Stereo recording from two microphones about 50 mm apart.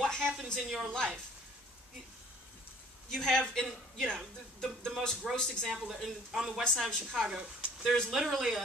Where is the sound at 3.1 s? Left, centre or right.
Centre.